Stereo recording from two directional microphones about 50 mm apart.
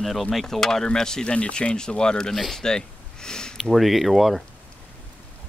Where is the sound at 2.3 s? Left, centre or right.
Centre.